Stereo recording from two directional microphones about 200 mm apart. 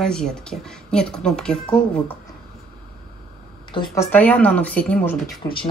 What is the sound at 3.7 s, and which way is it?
Speech, 25° left (ahead or behind).